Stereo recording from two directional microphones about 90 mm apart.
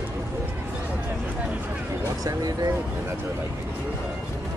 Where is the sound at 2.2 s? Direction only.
45° right (ahead or behind).